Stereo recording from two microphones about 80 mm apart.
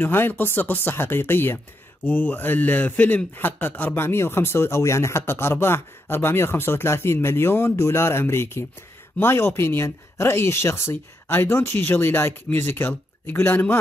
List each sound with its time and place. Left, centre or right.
0.0 s a man's voice: left